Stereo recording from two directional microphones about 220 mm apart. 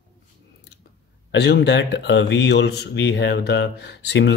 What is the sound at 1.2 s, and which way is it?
Speech, 50° left (ahead or behind).